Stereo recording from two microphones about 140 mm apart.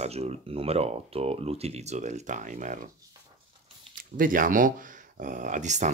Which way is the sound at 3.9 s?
75° right (ahead or behind).